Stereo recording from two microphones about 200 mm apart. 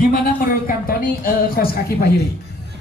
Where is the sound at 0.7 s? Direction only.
45° left (ahead or behind).